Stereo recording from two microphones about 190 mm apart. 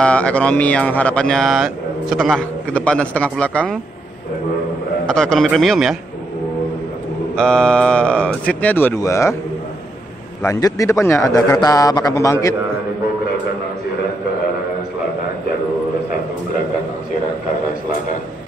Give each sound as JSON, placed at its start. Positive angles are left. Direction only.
{"t": 0.0, "sound": "speech", "side_deg": 5}
{"t": 5.0, "sound": "speech", "side_deg": 5}
{"t": 7.3, "sound": "speech", "side_deg": 5}
{"t": 10.4, "sound": "a man's voice", "side_deg": 15}